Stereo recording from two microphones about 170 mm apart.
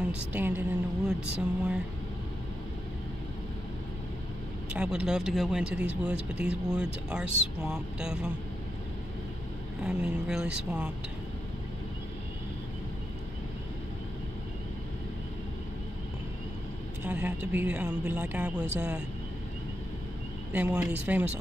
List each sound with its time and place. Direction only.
0.1 s speech: 10° right (ahead or behind)
4.6 s speech: 5° right (ahead or behind)
9.8 s speech: 5° right (ahead or behind)
17.0 s speech: 10° right (ahead or behind)
20.5 s speech: 5° right (ahead or behind)